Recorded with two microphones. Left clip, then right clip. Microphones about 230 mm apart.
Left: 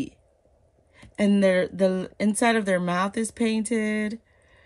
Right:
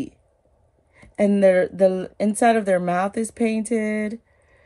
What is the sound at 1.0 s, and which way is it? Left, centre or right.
Speech, centre.